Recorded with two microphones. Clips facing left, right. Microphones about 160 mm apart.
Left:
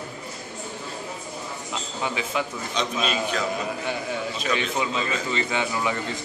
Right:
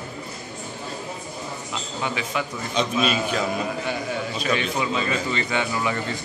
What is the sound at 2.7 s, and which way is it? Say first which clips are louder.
Speech: right 4 dB; 10° right (ahead or behind).